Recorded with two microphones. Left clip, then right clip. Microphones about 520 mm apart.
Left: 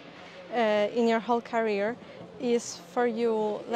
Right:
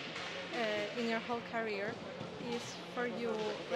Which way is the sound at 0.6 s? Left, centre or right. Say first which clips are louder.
Left 13 dB; left.